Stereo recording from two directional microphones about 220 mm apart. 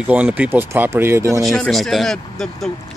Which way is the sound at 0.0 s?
5° right (ahead or behind).